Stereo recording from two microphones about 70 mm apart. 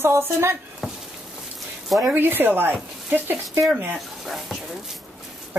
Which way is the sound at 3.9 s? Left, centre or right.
Centre.